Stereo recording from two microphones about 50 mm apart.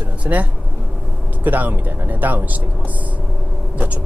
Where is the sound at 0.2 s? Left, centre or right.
Right.